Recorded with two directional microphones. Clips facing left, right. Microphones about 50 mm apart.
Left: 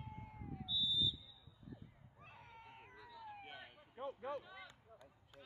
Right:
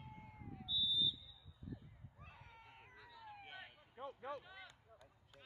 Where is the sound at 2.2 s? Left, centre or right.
Left.